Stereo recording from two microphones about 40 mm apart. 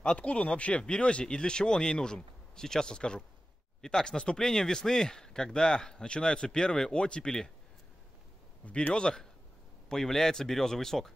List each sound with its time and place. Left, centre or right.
0.0 s speech: left
8.9 s speech: centre